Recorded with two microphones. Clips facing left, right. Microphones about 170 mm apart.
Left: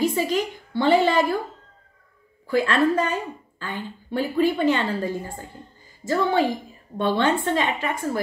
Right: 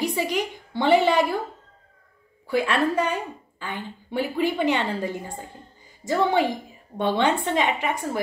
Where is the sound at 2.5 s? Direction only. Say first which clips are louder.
Left 2 dB; 15° right (ahead or behind).